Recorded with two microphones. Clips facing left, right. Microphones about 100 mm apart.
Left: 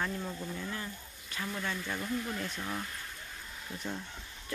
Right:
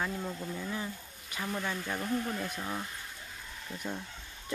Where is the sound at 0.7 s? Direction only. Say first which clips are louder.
Right 3 dB; 15° right (ahead or behind).